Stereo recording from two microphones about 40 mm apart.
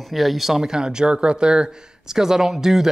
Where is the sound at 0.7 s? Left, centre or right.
Centre.